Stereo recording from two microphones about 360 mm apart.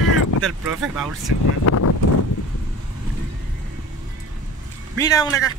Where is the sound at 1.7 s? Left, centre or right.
Left.